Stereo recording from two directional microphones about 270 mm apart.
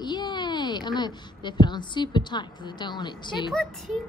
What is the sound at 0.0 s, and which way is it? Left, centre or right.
Speech, centre.